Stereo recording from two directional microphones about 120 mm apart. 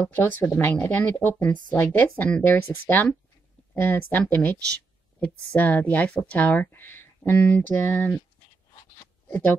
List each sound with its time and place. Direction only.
0.1 s speech: 15° left (ahead or behind)
9.3 s speech: 20° left (ahead or behind)